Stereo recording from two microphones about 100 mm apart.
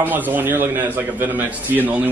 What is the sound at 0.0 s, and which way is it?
Speech, 20° right (ahead or behind).